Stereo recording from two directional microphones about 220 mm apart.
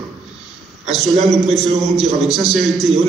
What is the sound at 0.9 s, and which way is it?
A man's voice, centre (ahead or behind).